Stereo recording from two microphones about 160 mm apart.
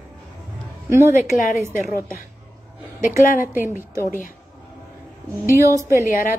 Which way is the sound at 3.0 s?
55° left (ahead or behind).